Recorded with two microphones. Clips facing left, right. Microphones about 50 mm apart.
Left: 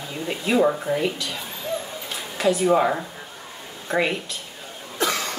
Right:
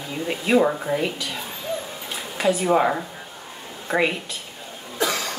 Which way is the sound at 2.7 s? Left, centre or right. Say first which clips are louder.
Right 1 dB; centre.